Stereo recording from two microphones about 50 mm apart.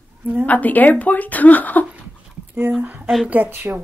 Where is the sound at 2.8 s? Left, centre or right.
Right.